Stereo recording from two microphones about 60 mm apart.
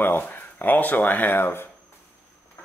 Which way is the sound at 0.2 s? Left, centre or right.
Left.